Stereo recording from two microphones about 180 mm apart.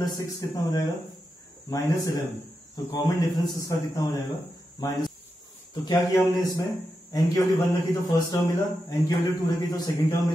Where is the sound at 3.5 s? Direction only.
20° left (ahead or behind).